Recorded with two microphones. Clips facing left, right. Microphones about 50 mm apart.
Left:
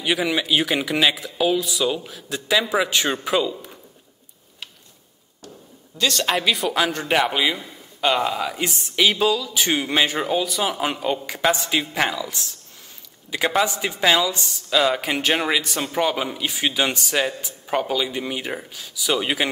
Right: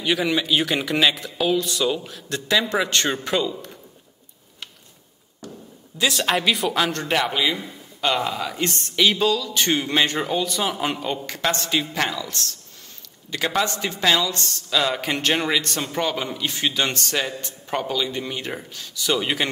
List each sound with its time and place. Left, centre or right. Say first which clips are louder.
0.0 s speech: even; centre
5.9 s a man's voice: even; centre